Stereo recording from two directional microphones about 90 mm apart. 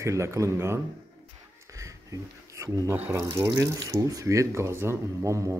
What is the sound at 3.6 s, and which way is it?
Speech, 35° right (ahead or behind).